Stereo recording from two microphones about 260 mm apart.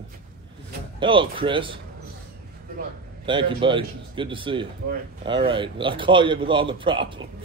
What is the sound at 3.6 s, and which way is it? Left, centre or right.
A man's voice, centre.